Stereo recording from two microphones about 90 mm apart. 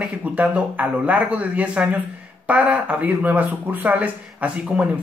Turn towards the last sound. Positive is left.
turn(degrees=-15)  # may be behind; listen again after turning